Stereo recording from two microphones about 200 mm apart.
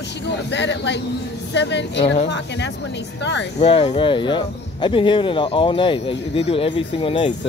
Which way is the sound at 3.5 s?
30° left (ahead or behind).